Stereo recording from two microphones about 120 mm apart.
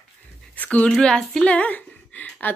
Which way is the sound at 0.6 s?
15° left (ahead or behind).